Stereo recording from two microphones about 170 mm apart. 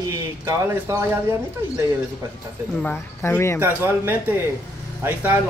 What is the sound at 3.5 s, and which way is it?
Speech, 15° right (ahead or behind).